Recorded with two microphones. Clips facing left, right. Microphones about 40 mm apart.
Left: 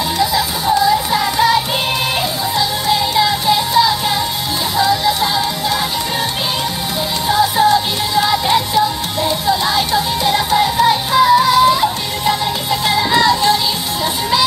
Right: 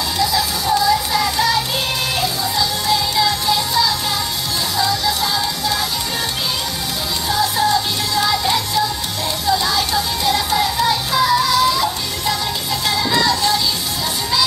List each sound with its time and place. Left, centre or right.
0.2 s music: centre
7.2 s music: left